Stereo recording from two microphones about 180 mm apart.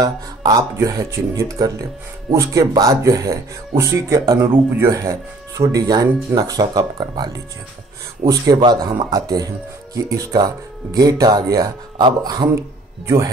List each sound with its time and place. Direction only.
0.0 s speech: 20° right (ahead or behind)
8.3 s speech: 20° right (ahead or behind)